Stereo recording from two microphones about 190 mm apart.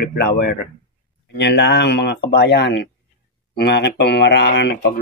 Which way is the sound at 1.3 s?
65° left (ahead or behind).